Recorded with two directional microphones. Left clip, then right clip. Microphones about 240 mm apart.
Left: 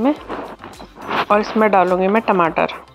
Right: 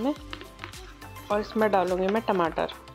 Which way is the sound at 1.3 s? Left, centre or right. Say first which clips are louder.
Left 9 dB; left.